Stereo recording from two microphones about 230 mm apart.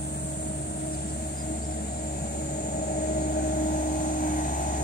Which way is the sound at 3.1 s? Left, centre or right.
Left.